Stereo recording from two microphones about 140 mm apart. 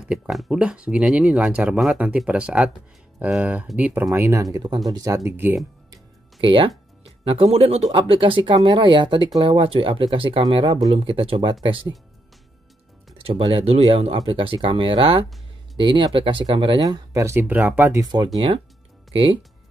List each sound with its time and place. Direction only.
0.1 s speech: 5° right (ahead or behind)
6.4 s speech: 40° right (ahead or behind)
13.2 s speech: 40° right (ahead or behind)
16.8 s speech: 25° right (ahead or behind)
18.0 s speech: 30° right (ahead or behind)